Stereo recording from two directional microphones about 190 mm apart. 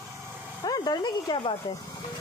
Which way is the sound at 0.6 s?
20° left (ahead or behind).